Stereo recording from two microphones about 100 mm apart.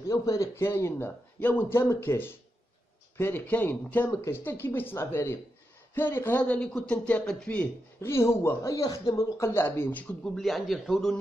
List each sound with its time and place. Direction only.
0.1 s a man's voice: 35° left (ahead or behind); by 8.1 s 15° left (ahead or behind)
8.1 s a man's voice: 25° left (ahead or behind)
10.3 s a man's voice: centre (ahead or behind)